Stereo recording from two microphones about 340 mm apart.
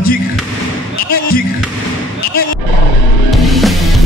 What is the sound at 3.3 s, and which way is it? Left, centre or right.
Music, centre.